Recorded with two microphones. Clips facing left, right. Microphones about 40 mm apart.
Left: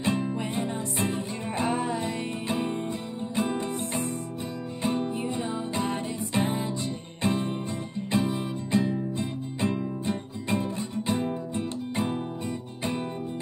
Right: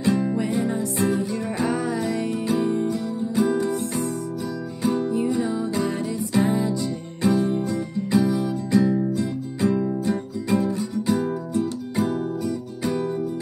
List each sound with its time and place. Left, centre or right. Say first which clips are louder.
0.0 s music: right 6 dB; left